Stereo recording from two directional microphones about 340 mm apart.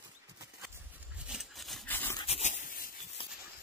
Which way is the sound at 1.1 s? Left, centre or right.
Centre.